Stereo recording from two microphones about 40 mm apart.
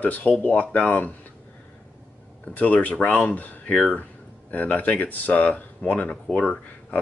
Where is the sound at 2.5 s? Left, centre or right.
Left.